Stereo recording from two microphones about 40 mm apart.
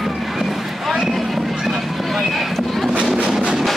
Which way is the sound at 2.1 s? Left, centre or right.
Centre.